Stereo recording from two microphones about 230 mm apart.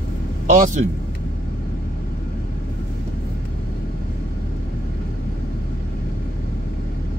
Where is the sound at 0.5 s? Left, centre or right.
Right.